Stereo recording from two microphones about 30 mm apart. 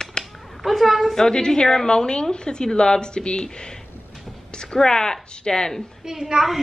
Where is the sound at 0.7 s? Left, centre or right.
Centre.